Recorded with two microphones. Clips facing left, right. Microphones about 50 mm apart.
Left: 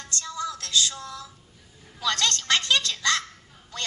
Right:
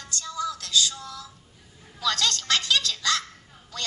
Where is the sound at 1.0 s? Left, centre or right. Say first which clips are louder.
Left 1 dB; left.